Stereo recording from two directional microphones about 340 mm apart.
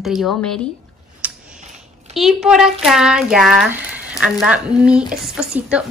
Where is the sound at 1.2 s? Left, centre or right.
Centre.